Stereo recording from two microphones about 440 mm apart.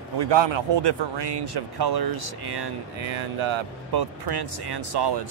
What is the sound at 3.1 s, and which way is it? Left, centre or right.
A man's voice, right.